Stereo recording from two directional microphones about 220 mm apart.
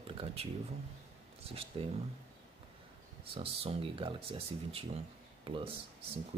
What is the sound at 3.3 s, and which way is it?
Speech, 25° right (ahead or behind).